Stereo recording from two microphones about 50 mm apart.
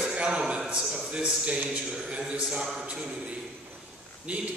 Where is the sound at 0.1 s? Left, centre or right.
Centre.